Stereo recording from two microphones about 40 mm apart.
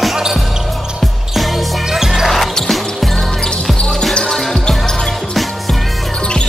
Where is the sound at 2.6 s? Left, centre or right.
Centre.